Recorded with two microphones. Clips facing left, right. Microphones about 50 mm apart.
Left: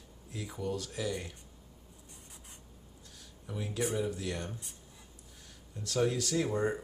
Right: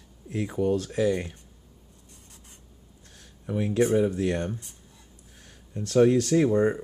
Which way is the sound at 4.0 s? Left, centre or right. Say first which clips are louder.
Right 10 dB; right.